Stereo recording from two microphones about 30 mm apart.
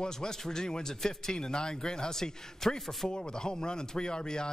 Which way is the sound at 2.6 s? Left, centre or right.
Centre.